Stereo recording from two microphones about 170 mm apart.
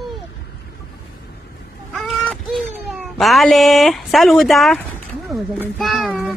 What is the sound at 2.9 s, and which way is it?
Speech, centre (ahead or behind).